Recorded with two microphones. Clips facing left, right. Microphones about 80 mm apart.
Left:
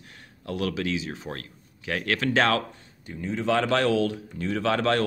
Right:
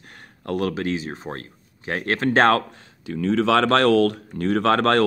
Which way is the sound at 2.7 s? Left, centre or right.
Right.